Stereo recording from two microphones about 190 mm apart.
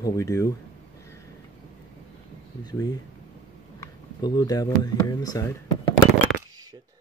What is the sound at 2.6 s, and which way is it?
Speech, 20° left (ahead or behind).